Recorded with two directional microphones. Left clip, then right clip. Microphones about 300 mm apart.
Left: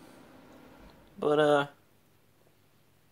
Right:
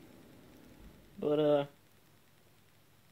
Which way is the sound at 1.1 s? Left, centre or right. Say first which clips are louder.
Left 5 dB; left.